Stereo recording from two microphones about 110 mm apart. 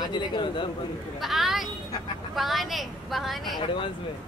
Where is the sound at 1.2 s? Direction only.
Centre (ahead or behind).